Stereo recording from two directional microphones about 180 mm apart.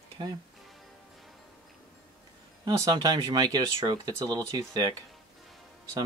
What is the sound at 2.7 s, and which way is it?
Speech, 20° right (ahead or behind).